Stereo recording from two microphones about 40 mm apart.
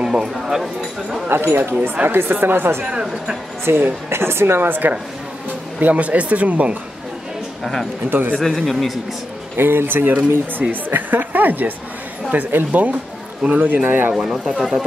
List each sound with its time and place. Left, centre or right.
0.0 s a sound: centre
0.3 s speech: centre
1.3 s speech: right
2.0 s speech: right
2.8 s speech: right
3.6 s speech: right
5.8 s speech: right
7.6 s speech: centre
8.1 s speech: right
8.6 s speech: centre
9.6 s a woman's voice: right
14.1 s speech: centre